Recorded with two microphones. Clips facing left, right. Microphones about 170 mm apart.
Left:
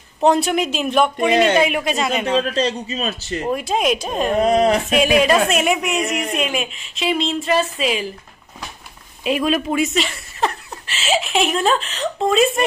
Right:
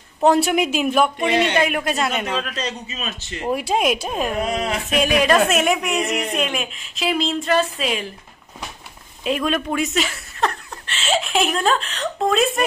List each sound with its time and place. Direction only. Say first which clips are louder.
0.2 s a woman's voice: even; 5° right (ahead or behind)
2.3 s a man's voice: left 7 dB; 30° left (ahead or behind)
3.4 s speech: even; 10° right (ahead or behind)
4.4 s a man's voice: left 8 dB; 35° left (ahead or behind)
4.9 s a woman's voice: right 2 dB; centre (ahead or behind)
9.2 s speech: left 2 dB; 5° left (ahead or behind)